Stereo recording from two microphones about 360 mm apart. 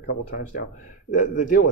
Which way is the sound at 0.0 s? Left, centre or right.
Left.